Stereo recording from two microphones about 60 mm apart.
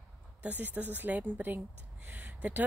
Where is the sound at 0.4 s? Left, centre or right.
Right.